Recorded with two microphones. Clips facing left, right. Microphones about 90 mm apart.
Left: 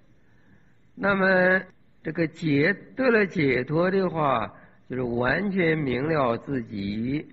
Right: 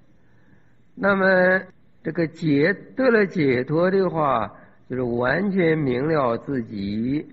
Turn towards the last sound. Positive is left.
turn(degrees=-5)  # may be behind; listen again after turning